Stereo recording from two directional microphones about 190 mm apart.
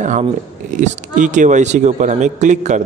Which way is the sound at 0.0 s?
40° right (ahead or behind).